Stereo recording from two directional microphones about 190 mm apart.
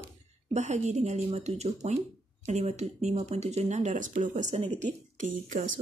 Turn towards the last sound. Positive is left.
turn(degrees=-40)  # may be behind; listen again after turning